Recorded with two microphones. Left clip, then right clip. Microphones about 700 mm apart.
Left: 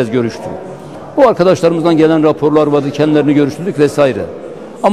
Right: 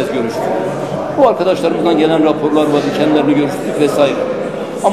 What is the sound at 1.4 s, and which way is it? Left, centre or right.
A man's voice, left.